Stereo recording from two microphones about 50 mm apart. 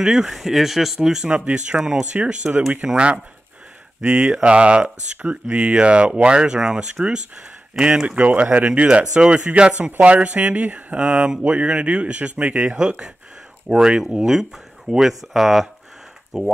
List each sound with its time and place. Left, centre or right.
0.0 s speech: centre
1.3 s speech: right
8.2 s speech: right; by 16.5 s centre